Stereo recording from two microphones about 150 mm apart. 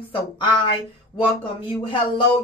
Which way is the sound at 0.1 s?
35° left (ahead or behind).